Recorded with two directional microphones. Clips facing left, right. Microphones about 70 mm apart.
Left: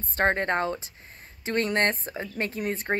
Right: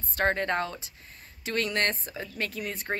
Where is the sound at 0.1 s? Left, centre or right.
Left.